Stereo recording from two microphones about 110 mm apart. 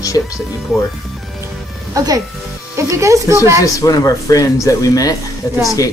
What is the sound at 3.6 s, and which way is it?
Speech, 30° left (ahead or behind).